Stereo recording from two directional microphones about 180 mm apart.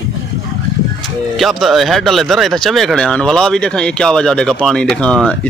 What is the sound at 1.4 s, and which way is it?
Speech, centre (ahead or behind).